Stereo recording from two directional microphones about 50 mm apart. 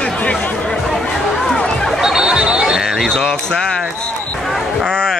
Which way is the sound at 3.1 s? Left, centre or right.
Centre.